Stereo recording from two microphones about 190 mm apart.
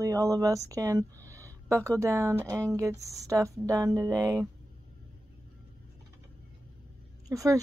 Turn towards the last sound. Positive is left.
turn(degrees=-15)  # may be behind; listen again after turning